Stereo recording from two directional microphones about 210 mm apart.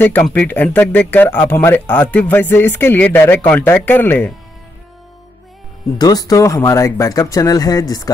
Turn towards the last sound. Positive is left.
turn(degrees=15)  # may be behind; listen again after turning